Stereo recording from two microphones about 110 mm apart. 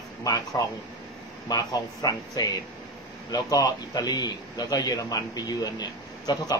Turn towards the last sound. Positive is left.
turn(degrees=40)  # may be behind; listen again after turning